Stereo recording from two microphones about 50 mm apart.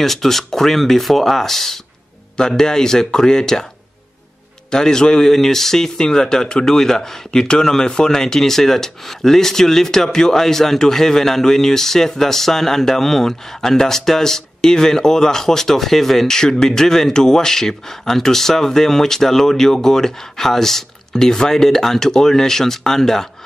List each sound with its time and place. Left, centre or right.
0.0 s speech: centre
4.6 s speech: centre